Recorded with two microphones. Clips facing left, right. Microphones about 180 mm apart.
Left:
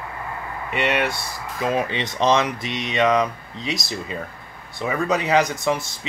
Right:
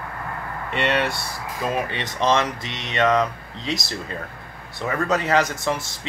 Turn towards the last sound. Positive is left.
turn(degrees=15)  # may be behind; listen again after turning